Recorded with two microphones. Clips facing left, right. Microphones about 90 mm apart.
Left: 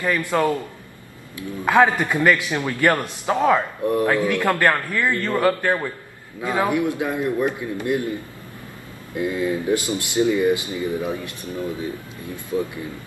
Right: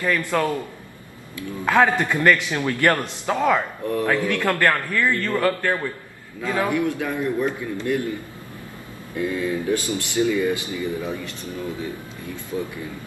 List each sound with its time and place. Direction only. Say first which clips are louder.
0.0 s a man's voice: left 1 dB; 15° left (ahead or behind)
1.6 s a man's voice: left 1 dB; 15° left (ahead or behind)
9.1 s speech: left 1 dB; 20° left (ahead or behind)